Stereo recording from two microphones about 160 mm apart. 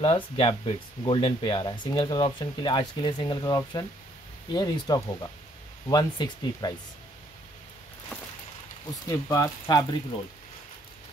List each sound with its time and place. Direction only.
0.0 s speech: 35° left (ahead or behind)
8.1 s a sound: 5° left (ahead or behind)
9.0 s speech: 20° left (ahead or behind)